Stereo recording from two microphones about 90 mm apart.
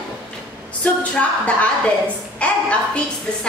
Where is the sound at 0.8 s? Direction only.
15° left (ahead or behind).